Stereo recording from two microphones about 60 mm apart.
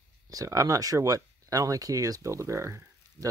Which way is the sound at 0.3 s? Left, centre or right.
Right.